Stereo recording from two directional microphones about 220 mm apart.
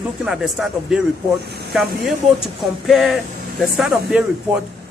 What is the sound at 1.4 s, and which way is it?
Speech, 50° right (ahead or behind).